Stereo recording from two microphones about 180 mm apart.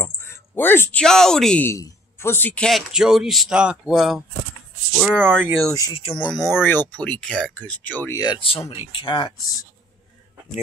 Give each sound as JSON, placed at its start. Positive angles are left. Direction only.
{"t": 0.0, "sound": "speech", "side_deg": 10}
{"t": 5.7, "sound": "speech", "side_deg": 20}
{"t": 5.9, "sound": "speech", "side_deg": 30}
{"t": 6.3, "sound": "speech", "side_deg": 15}
{"t": 8.2, "sound": "speech", "side_deg": 25}